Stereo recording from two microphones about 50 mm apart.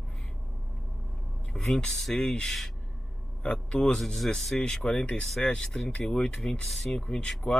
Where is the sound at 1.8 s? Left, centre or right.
Centre.